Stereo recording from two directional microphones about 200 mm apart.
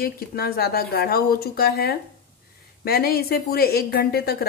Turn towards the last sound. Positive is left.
turn(degrees=50)  # may be behind; listen again after turning